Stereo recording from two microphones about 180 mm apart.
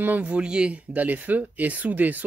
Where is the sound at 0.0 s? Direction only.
10° right (ahead or behind).